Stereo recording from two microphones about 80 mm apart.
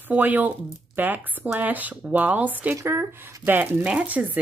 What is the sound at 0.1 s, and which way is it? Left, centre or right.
Speech, right.